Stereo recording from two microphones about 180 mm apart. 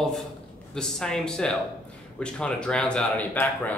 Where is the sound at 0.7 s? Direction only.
5° left (ahead or behind).